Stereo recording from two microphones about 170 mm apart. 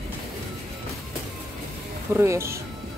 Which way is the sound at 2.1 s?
15° right (ahead or behind).